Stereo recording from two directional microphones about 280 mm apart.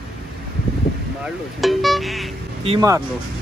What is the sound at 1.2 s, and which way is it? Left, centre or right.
Speech, centre.